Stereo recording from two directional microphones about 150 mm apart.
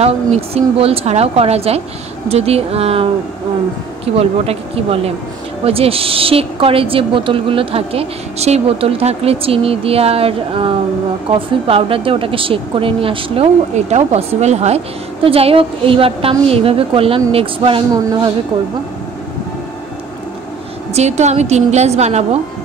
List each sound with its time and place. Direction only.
0.0 s a woman's voice: 45° right (ahead or behind)
4.2 s a woman's voice: 40° right (ahead or behind)
20.9 s a woman's voice: 50° right (ahead or behind)